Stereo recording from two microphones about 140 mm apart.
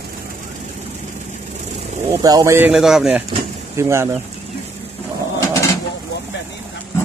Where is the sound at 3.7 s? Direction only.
20° right (ahead or behind).